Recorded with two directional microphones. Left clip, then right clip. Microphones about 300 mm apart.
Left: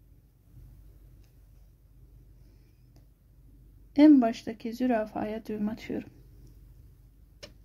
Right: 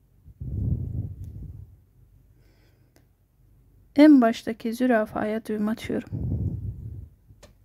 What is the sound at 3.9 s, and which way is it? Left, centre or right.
Speech, centre.